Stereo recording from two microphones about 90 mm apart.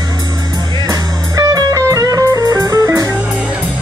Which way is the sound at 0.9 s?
40° right (ahead or behind).